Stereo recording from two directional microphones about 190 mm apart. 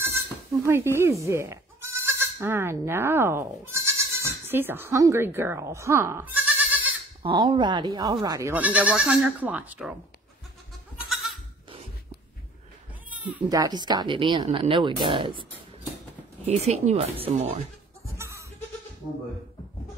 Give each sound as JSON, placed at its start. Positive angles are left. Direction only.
{"t": 0.7, "sound": "speech", "side_deg": -10}
{"t": 7.2, "sound": "speech", "side_deg": -25}
{"t": 11.1, "sound": "goat", "side_deg": 0}
{"t": 13.1, "sound": "bleat", "side_deg": -5}
{"t": 13.5, "sound": "speech", "side_deg": -20}
{"t": 16.4, "sound": "speech", "side_deg": -35}
{"t": 18.1, "sound": "goat", "side_deg": -15}